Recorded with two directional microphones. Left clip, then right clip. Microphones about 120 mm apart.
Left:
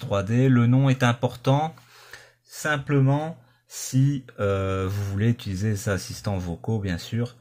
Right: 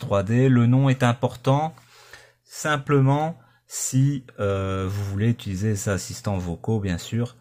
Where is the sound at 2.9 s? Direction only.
55° right (ahead or behind).